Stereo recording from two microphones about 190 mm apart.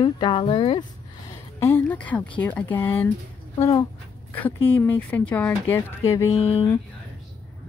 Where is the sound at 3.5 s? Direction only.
25° left (ahead or behind).